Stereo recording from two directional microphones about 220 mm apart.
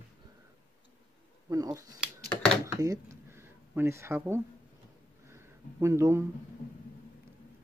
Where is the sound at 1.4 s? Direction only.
15° right (ahead or behind).